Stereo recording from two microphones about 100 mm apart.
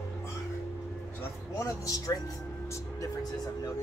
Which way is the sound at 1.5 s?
35° left (ahead or behind).